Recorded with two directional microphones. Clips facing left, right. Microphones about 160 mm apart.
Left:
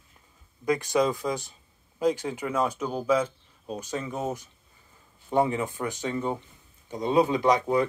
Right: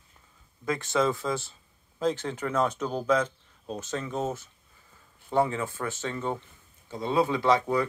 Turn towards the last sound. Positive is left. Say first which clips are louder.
# left 1 dB
turn(degrees=15)  # may be behind; listen again after turning